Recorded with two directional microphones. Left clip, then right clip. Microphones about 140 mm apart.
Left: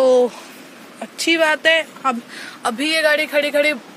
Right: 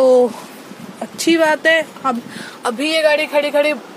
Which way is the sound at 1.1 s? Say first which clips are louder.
Right 2 dB; 25° right (ahead or behind).